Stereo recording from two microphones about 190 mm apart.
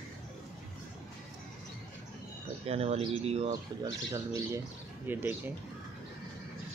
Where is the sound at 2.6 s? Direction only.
30° right (ahead or behind).